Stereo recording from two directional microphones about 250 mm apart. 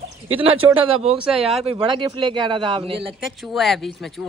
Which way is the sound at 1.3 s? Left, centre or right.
Centre.